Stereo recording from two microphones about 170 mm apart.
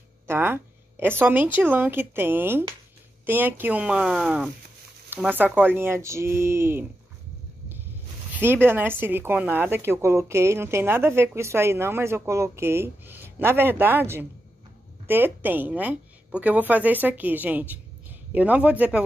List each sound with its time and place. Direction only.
0.3 s speech: 15° right (ahead or behind)
8.4 s speech: 10° right (ahead or behind)